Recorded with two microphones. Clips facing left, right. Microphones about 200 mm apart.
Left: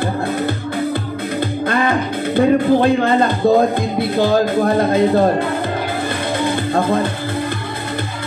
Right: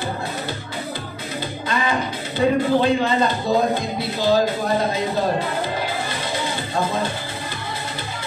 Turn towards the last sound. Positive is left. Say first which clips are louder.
# left 7 dB
turn(degrees=55)  # may be behind; listen again after turning